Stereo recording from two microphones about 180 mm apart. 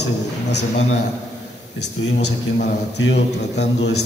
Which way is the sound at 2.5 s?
75° left (ahead or behind).